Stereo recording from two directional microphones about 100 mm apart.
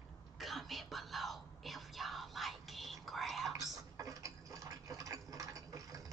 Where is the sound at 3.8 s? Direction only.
35° right (ahead or behind).